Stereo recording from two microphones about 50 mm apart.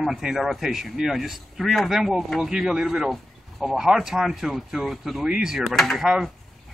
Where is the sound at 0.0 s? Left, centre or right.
Centre.